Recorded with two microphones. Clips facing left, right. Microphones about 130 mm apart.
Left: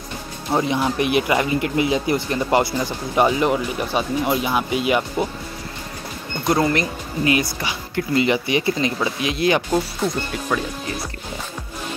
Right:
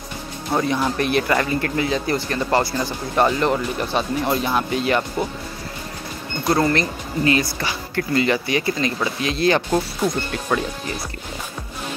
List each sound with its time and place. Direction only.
0.5 s speech: 15° left (ahead or behind)
6.4 s speech: 15° left (ahead or behind)